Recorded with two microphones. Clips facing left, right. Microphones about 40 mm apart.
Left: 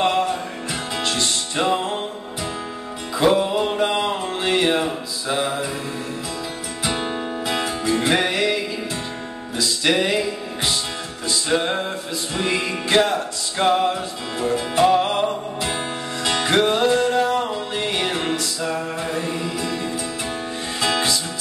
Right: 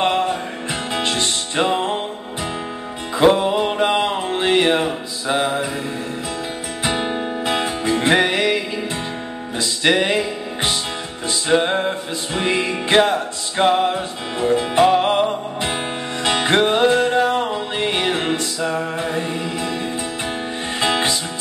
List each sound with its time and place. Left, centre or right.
0.0 s music: right
3.2 s music: right
6.8 s music: right
20.8 s music: right